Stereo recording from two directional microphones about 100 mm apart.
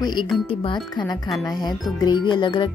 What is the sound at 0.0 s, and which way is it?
Speech, 45° left (ahead or behind).